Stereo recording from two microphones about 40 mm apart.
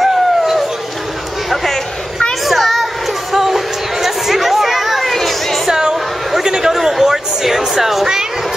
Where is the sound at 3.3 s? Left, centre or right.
Centre.